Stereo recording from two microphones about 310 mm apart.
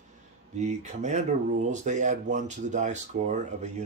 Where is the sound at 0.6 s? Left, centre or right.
Right.